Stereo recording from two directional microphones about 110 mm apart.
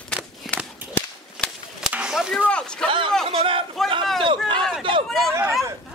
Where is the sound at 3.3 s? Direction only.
55° right (ahead or behind).